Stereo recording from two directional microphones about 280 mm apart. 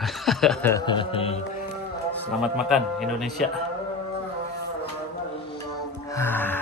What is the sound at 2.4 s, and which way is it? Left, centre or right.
Speech, centre.